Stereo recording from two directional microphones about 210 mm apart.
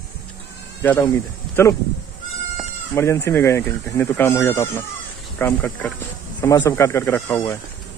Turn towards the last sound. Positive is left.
turn(degrees=15)  # may be behind; listen again after turning